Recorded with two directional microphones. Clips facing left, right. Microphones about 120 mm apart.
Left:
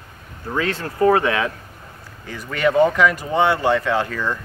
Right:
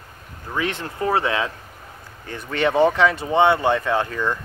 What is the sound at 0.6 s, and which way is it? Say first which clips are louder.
Speech: left 6 dB; 20° right (ahead or behind).